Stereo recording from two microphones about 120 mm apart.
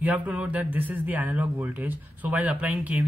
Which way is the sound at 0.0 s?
10° right (ahead or behind).